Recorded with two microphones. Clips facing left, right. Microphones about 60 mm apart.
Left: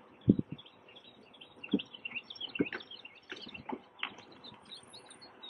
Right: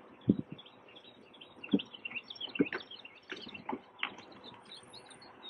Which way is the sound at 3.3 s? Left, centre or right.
Right.